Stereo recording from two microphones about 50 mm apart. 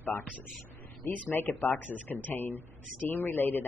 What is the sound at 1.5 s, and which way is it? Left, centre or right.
Speech, left.